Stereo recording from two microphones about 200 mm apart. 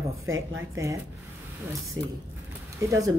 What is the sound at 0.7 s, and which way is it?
Speech, 15° right (ahead or behind).